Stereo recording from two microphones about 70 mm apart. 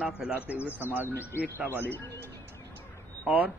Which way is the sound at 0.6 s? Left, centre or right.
Right.